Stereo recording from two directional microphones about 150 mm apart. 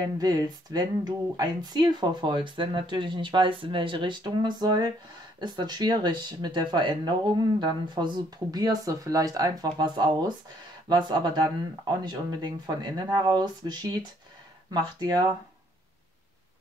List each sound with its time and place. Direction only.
0.2 s speech: 25° right (ahead or behind)